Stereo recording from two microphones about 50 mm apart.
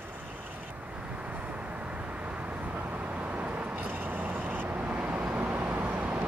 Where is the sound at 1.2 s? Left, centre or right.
Right.